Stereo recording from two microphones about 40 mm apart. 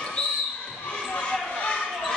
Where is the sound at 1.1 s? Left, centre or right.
Left.